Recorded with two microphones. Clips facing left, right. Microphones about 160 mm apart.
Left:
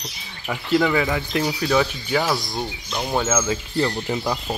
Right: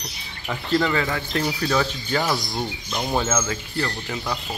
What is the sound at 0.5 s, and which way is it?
Speech, 10° left (ahead or behind).